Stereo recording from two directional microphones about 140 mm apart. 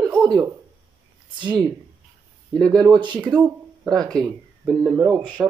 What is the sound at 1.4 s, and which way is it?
Speech, 35° right (ahead or behind).